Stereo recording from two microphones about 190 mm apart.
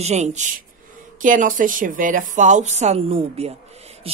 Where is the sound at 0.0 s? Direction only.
35° right (ahead or behind).